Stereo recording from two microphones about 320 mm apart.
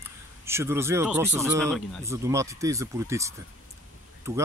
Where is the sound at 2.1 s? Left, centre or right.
Centre.